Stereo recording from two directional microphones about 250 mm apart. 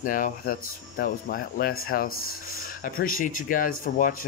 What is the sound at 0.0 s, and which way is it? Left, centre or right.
Speech, left.